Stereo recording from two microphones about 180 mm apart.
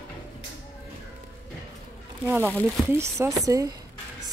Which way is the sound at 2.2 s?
10° right (ahead or behind).